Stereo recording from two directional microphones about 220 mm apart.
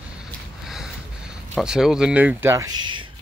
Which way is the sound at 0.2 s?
Centre (ahead or behind).